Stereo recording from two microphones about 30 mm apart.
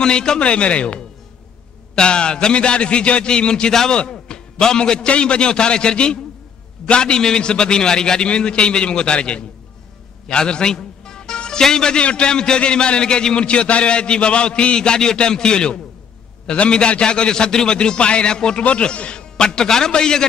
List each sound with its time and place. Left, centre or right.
0.0 s a man's voice: left
0.4 s a man's voice: left
2.0 s a man's voice: left
10.2 s a man's voice: left
11.1 s music: left
11.7 s a man's voice: left
12.0 s a man's voice: left
18.6 s a man's voice: left
19.3 s a man's voice: left